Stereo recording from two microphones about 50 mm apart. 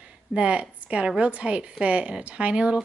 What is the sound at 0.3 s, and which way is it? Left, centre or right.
A woman's voice, right.